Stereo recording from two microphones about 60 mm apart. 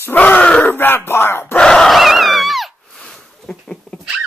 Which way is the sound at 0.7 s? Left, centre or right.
Left.